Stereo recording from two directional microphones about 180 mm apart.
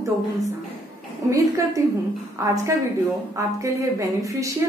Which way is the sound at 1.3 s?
20° right (ahead or behind).